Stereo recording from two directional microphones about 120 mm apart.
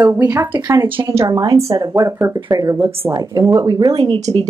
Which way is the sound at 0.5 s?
35° right (ahead or behind).